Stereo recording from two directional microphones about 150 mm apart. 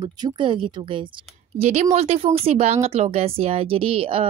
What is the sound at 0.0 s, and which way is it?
Speech, 30° right (ahead or behind).